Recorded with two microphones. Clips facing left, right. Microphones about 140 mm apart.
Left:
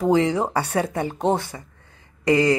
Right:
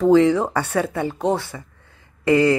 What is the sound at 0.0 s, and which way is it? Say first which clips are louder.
Speech: right 4 dB; 15° left (ahead or behind).